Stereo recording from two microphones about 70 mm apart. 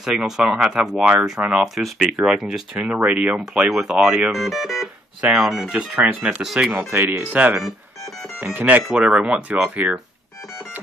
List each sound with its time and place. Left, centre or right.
0.0 s speech: centre
2.7 s speech: centre
6.4 s speech: centre
6.9 s speech: right
7.2 s speech: centre